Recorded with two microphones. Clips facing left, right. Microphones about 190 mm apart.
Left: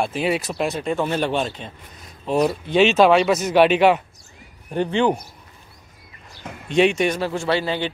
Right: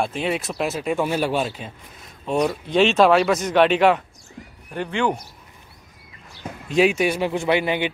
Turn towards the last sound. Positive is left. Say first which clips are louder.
# right 1 dB
turn(degrees=-15)  # may be behind; listen again after turning